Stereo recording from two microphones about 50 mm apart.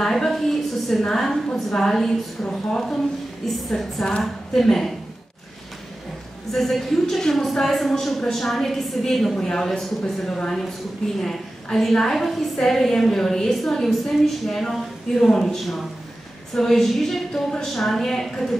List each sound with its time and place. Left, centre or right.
0.0 s a woman's voice: centre
6.5 s a woman's voice: centre